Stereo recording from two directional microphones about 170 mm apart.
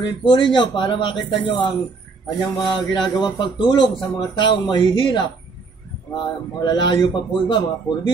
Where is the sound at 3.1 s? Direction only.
25° left (ahead or behind).